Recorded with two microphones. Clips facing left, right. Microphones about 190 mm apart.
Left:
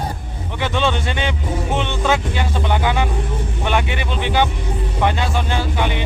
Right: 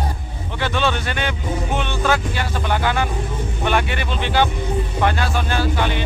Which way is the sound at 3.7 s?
15° left (ahead or behind).